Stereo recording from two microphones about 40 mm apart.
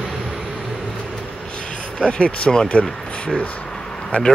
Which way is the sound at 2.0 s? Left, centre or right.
Left.